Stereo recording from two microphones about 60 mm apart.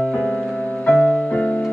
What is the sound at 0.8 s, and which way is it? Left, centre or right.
Music, left.